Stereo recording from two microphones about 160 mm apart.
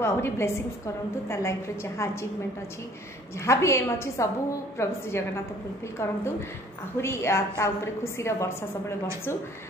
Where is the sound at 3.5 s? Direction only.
20° left (ahead or behind).